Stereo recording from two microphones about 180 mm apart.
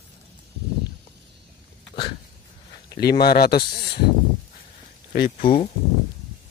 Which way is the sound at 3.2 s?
60° left (ahead or behind).